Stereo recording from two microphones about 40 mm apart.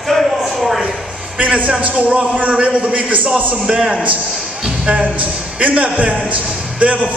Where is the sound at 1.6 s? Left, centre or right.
Right.